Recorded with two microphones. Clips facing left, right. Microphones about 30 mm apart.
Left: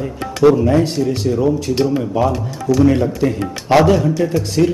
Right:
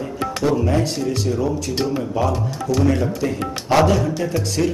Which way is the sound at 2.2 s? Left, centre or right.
Centre.